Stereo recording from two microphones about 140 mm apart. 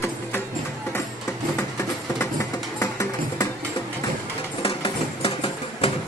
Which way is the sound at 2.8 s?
20° left (ahead or behind).